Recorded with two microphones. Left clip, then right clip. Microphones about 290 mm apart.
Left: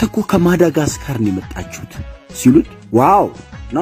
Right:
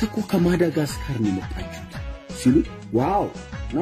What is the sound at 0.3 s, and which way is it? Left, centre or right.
Speech, centre.